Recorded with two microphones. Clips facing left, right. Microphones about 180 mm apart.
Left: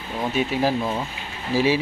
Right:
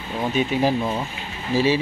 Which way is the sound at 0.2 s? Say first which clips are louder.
Right 1 dB; 5° left (ahead or behind).